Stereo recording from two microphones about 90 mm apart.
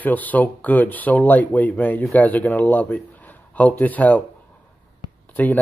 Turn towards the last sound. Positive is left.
turn(degrees=20)  # may be behind; listen again after turning